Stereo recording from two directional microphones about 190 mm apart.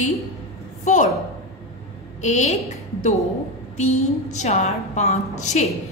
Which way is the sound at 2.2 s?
40° left (ahead or behind).